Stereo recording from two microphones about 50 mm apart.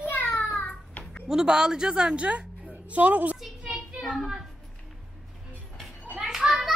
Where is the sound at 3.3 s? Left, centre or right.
Centre.